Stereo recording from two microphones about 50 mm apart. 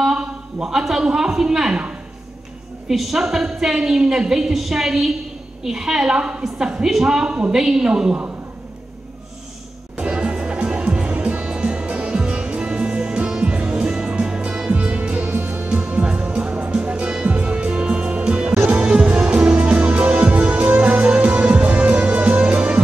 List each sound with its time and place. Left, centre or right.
0.0 s a man's voice: centre
2.9 s a woman's voice: centre
9.9 s music: centre
14.7 s music: right
15.3 s music: right
15.7 s music: right